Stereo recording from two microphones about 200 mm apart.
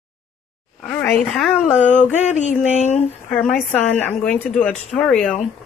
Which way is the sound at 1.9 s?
40° left (ahead or behind).